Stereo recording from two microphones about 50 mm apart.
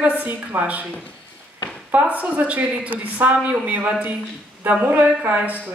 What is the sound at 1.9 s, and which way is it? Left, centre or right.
A woman's voice, right.